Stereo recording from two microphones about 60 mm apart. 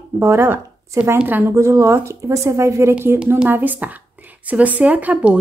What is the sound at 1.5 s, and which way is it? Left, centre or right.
A woman's voice, right.